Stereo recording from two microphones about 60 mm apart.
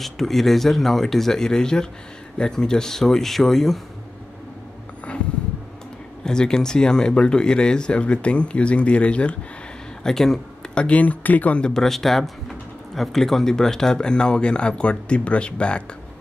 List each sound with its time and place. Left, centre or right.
0.0 s speech: centre
6.2 s speech: centre
10.0 s speech: centre
10.7 s speech: centre
11.6 s speech: centre